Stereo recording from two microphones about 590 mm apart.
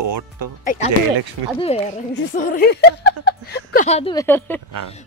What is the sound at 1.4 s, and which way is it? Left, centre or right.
Speech, right.